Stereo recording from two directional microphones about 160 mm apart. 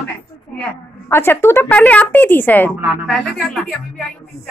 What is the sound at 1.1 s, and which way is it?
A woman's voice, 15° left (ahead or behind).